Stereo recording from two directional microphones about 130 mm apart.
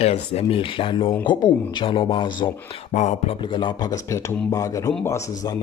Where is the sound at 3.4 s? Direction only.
40° left (ahead or behind).